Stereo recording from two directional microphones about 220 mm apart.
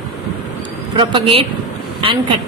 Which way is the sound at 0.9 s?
25° right (ahead or behind).